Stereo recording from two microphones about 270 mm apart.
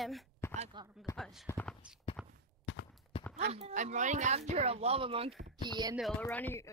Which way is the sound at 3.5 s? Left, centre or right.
Right.